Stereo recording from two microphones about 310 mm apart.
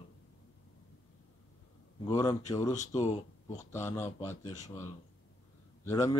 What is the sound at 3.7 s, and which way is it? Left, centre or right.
Speech, centre.